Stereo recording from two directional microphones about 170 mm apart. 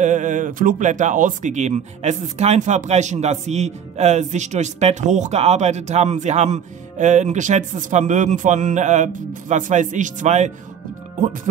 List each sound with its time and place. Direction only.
0.0 s speech: 45° right (ahead or behind)